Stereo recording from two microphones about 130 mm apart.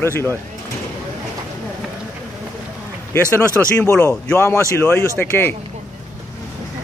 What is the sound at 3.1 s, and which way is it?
Speech, 20° left (ahead or behind).